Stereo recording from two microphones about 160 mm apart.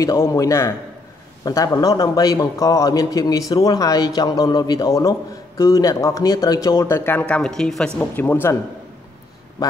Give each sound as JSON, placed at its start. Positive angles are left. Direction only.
{"t": 0.0, "sound": "a man's voice", "side_deg": 20}
{"t": 9.6, "sound": "a man's voice", "side_deg": 20}